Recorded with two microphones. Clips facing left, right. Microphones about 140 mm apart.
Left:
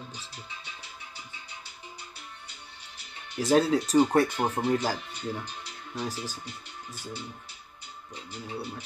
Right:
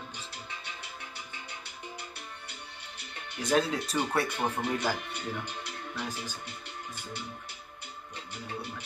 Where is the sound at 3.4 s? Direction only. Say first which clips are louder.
Left 5 dB; 35° left (ahead or behind).